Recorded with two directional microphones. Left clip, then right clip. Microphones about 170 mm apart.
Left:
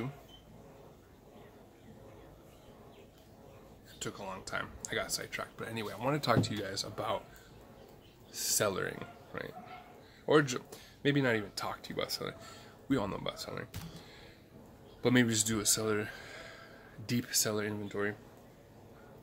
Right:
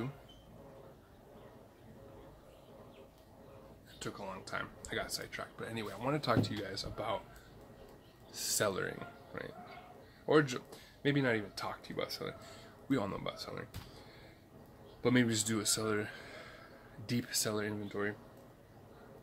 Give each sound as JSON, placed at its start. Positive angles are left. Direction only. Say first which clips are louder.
{"t": 4.0, "sound": "speech", "louder": "left 2 dB", "side_deg": 15}
{"t": 8.3, "sound": "speech", "louder": "left 2 dB", "side_deg": 15}
{"t": 15.0, "sound": "speech", "louder": "left 2 dB", "side_deg": 20}